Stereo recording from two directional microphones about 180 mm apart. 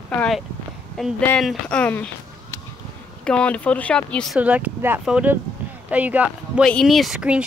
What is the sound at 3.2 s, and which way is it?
Speech, 5° left (ahead or behind).